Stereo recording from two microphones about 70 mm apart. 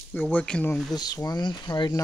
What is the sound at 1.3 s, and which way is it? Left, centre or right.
Speech, left.